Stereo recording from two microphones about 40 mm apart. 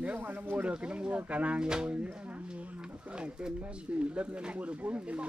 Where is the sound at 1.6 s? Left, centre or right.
Right.